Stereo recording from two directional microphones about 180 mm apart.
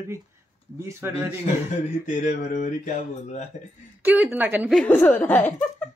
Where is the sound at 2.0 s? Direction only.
45° left (ahead or behind).